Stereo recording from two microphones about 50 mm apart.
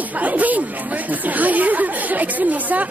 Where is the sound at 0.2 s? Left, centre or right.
Right.